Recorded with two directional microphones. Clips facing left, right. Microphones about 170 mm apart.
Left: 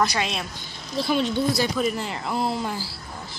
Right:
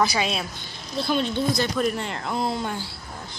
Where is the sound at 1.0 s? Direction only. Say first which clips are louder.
Left 1 dB; 10° left (ahead or behind).